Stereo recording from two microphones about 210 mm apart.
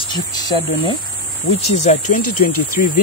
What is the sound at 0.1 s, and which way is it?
Speech, 20° left (ahead or behind).